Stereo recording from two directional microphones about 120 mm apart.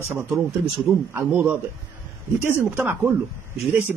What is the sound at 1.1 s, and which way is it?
Speech, 20° right (ahead or behind).